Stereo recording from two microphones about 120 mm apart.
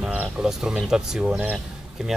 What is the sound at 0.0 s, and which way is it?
Speech, 10° right (ahead or behind).